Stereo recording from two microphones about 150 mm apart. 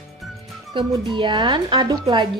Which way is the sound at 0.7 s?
30° right (ahead or behind).